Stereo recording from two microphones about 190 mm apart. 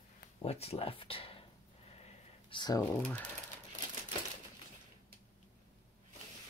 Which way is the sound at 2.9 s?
10° left (ahead or behind).